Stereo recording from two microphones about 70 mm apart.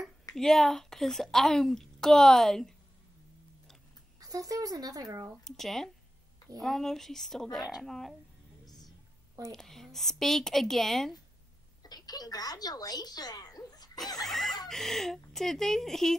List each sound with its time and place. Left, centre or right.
0.4 s a woman's voice: centre
4.2 s speech: right
5.4 s a woman's voice: centre
9.5 s a woman's voice: centre
11.8 s speech: left
14.2 s a woman's voice: centre